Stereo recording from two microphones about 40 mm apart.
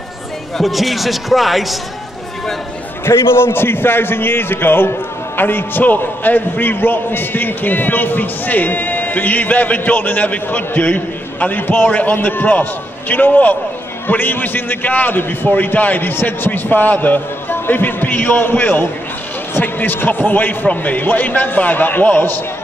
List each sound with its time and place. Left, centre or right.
0.6 s speech: centre
3.2 s a man's voice: left
11.9 s a man's voice: left
14.0 s a man's voice: left